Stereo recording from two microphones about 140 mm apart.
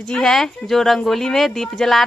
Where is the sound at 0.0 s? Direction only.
Centre (ahead or behind).